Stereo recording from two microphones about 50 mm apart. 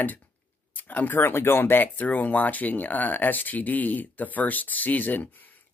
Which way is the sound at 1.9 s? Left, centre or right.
Left.